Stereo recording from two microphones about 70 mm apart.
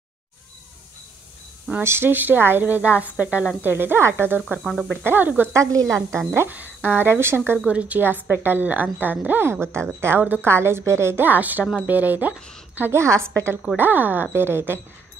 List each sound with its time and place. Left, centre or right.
1.8 s speech: right; by 3.4 s centre
3.6 s speech: right
4.6 s speech: centre
5.0 s speech: right
5.5 s speech: right
6.0 s speech: right
6.5 s speech: right
7.5 s speech: centre
9.4 s speech: right
11.2 s speech: right
12.4 s a woman's voice: centre
12.9 s speech: right
13.7 s speech: right